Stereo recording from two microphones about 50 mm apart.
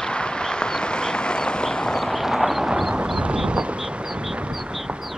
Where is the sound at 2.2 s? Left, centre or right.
Centre.